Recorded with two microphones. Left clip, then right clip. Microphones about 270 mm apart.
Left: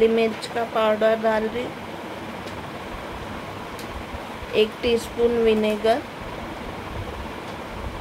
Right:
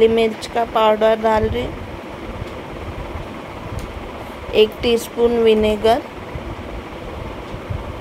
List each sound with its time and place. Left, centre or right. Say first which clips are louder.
0.0 s speech: right 5 dB; centre
4.6 s speech: right 6 dB; centre